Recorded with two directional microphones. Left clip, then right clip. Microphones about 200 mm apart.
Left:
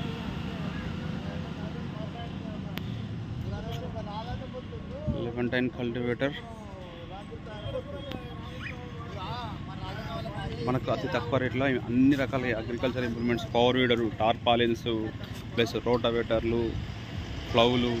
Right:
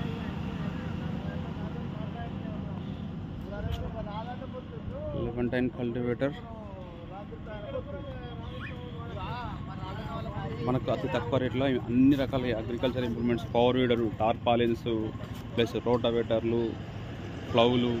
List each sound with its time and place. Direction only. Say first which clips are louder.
5.2 s a man's voice: left 1 dB; centre (ahead or behind)
10.6 s a man's voice: even; 5° left (ahead or behind)